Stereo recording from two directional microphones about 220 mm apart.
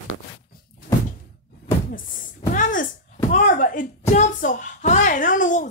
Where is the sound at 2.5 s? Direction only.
35° left (ahead or behind).